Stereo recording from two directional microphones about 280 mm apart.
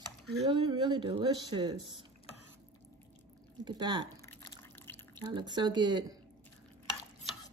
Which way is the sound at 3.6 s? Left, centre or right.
Centre.